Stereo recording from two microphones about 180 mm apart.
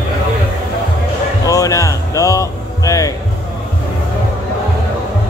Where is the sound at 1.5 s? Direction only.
20° left (ahead or behind).